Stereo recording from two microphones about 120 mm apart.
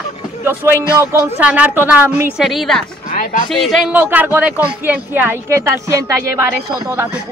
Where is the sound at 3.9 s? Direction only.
15° right (ahead or behind).